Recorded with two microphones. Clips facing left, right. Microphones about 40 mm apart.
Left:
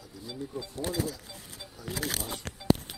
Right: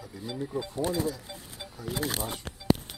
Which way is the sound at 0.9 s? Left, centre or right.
Right.